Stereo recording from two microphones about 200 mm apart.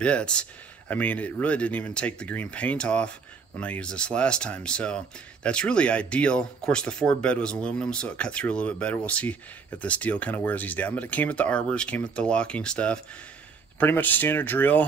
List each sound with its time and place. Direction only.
0.0 s speech: 5° left (ahead or behind)